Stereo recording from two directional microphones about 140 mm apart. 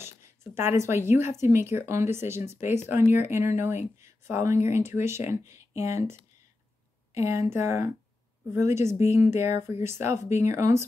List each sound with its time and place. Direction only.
0.6 s speech: 20° right (ahead or behind)
7.2 s speech: 20° right (ahead or behind)